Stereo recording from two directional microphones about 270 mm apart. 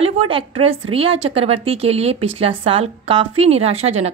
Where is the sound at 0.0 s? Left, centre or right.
Right.